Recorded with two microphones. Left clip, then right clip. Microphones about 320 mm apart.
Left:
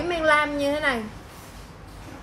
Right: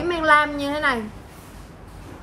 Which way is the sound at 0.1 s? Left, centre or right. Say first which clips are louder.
Right 3 dB; centre.